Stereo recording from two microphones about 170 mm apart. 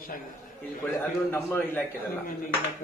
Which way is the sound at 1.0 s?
15° left (ahead or behind).